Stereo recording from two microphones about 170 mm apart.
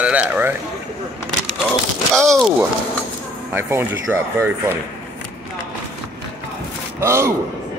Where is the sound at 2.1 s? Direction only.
5° left (ahead or behind).